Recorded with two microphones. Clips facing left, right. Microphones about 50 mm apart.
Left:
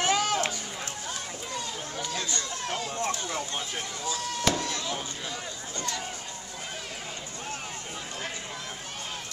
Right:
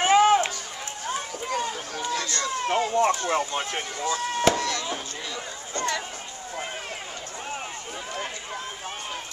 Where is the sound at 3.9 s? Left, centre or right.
Right.